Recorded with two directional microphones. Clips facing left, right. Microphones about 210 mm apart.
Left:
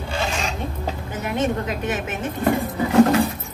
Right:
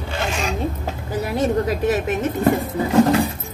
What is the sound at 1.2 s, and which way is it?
A woman's voice, 35° right (ahead or behind).